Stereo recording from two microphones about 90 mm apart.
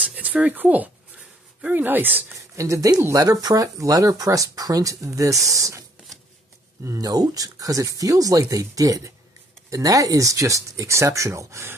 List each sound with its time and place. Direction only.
0.0 s a sound: 15° right (ahead or behind)
1.6 s speech: 20° right (ahead or behind)
2.5 s speech: 35° right (ahead or behind)